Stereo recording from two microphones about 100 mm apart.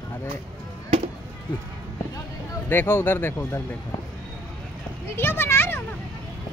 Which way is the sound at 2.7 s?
20° left (ahead or behind).